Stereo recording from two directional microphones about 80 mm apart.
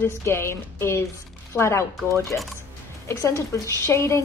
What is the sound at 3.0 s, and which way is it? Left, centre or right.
Speech, left.